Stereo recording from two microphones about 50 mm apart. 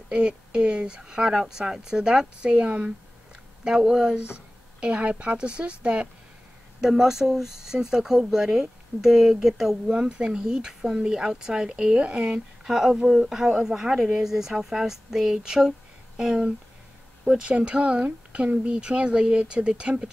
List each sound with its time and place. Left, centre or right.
0.1 s speech: centre
3.6 s speech: centre
4.7 s speech: right
6.8 s speech: centre
9.9 s speech: centre
12.6 s speech: centre